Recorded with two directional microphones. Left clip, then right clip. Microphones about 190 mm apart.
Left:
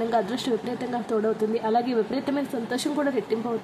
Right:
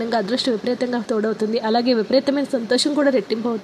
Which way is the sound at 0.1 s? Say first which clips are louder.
Right 4 dB; 20° right (ahead or behind).